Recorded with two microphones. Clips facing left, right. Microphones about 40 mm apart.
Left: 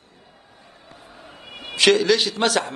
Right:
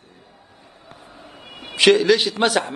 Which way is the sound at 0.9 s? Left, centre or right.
Centre.